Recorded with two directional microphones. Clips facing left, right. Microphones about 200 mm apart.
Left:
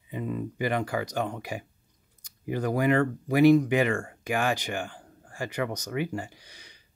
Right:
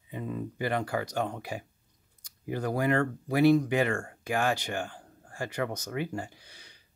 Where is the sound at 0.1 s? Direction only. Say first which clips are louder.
Left 3 dB; 15° left (ahead or behind).